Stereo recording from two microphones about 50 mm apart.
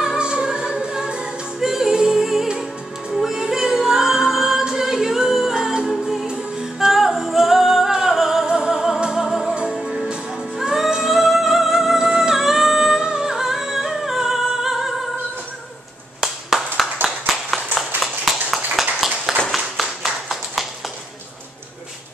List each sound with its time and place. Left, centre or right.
0.0 s music: centre
6.9 s singing: centre
8.5 s music: centre
16.2 s clapping: centre
18.0 s a sound: centre
19.5 s clapping: centre